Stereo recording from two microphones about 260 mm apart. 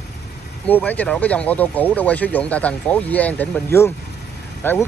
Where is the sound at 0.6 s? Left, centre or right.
Centre.